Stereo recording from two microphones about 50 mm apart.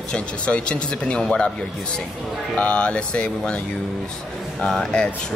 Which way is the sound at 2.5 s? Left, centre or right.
Left.